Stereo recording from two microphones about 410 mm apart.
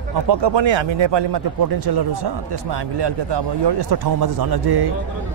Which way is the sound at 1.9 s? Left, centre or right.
Right.